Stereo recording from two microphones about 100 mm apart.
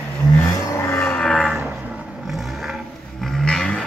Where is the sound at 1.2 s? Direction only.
5° left (ahead or behind).